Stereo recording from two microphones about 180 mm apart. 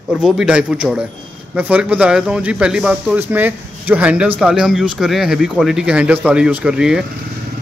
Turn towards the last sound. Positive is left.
turn(degrees=-5)  # may be behind; listen again after turning